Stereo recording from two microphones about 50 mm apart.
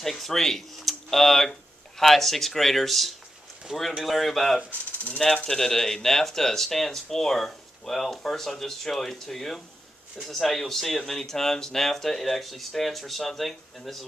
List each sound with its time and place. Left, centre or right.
0.0 s speech: centre
3.7 s speech: centre
4.0 s speech: centre
4.6 s speech: left
5.2 s speech: centre